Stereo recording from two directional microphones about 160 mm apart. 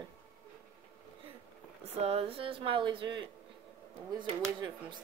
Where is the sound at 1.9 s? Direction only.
40° right (ahead or behind).